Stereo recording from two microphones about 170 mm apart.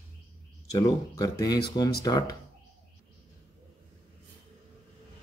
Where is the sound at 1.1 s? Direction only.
20° left (ahead or behind).